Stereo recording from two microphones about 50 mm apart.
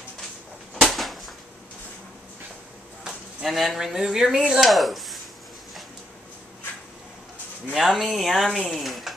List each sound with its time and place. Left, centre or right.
0.7 s a sound: centre
3.4 s speech: centre
7.7 s speech: centre